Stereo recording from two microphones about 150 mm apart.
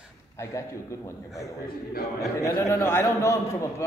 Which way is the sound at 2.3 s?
20° left (ahead or behind).